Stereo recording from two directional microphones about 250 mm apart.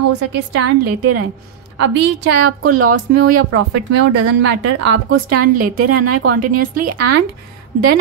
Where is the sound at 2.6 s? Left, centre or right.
Right.